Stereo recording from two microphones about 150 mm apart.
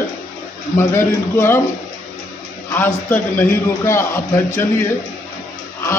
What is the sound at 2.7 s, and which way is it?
A man's voice, 15° left (ahead or behind).